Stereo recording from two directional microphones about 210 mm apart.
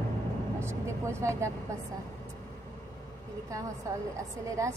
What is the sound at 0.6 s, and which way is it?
Speech, 10° right (ahead or behind).